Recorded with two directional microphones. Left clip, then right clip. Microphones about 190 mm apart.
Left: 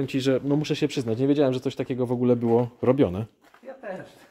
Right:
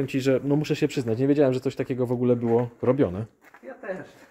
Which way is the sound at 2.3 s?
10° left (ahead or behind).